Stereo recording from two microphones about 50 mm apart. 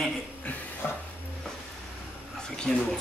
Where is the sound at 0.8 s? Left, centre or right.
Left.